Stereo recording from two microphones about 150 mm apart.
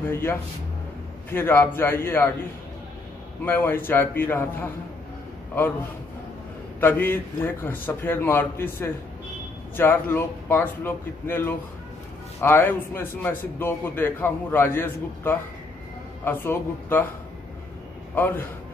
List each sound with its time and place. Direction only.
0.0 s a man's voice: 15° left (ahead or behind)
3.4 s a man's voice: 15° left (ahead or behind)
6.8 s a man's voice: 15° left (ahead or behind)
18.1 s a man's voice: 10° left (ahead or behind)